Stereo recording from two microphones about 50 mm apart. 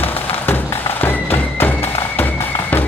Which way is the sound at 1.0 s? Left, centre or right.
Left.